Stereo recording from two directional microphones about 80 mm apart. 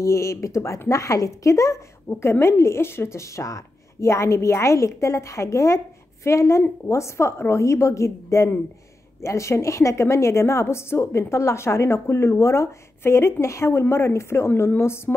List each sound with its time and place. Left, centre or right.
0.0 s a woman's voice: left